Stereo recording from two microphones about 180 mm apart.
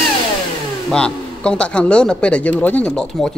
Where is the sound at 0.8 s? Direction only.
5° left (ahead or behind).